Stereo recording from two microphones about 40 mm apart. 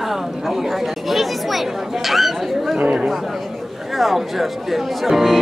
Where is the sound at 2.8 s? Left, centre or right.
Right.